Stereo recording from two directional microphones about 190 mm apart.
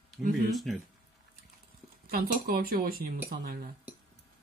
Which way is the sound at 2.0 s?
50° right (ahead or behind).